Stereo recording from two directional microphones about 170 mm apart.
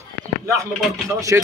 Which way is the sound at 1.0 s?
20° right (ahead or behind).